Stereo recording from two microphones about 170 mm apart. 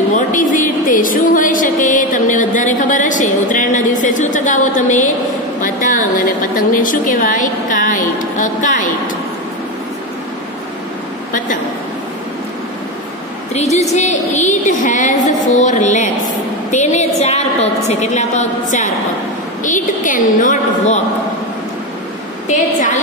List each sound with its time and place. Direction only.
0.1 s a sound: 50° left (ahead or behind)
5.6 s a woman's voice: 50° left (ahead or behind)
13.5 s a woman's voice: 40° left (ahead or behind)